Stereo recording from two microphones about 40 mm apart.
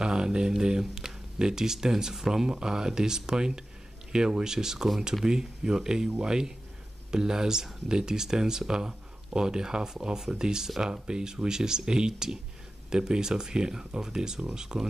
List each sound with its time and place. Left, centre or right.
0.0 s speech: centre